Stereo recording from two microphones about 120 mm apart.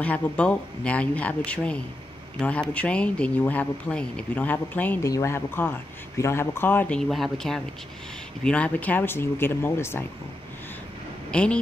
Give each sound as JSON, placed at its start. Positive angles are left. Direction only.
{"t": 0.0, "sound": "speech", "side_deg": 10}
{"t": 5.0, "sound": "speech", "side_deg": 25}
{"t": 7.0, "sound": "speech", "side_deg": 0}
{"t": 11.3, "sound": "speech", "side_deg": 10}